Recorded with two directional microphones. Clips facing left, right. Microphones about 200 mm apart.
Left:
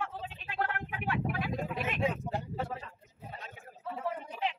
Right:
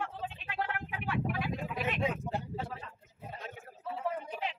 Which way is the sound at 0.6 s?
50° left (ahead or behind).